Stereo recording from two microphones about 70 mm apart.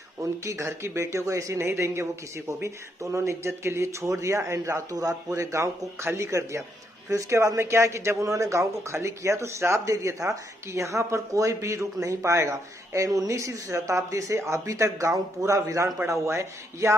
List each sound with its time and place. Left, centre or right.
0.2 s speech: right
4.9 s speech: right